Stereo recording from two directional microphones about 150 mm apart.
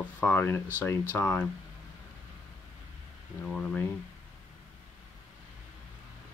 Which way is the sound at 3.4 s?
5° left (ahead or behind).